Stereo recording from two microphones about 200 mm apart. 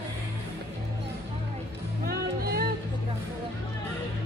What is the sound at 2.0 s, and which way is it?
Music, 50° right (ahead or behind).